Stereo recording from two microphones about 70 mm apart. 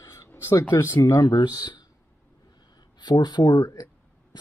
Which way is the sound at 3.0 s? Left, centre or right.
Left.